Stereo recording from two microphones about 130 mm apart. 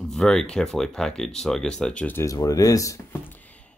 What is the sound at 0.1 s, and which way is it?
Speech, 5° left (ahead or behind).